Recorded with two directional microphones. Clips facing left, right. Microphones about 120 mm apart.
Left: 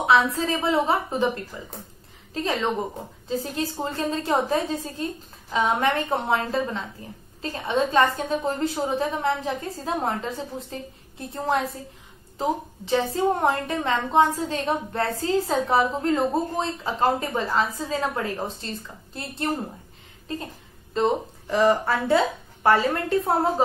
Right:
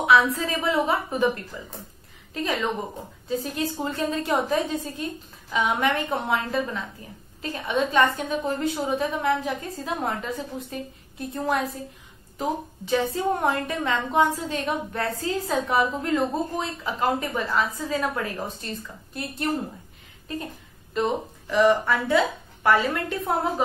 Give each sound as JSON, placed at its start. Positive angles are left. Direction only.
{"t": 0.0, "sound": "a woman's voice", "side_deg": 30}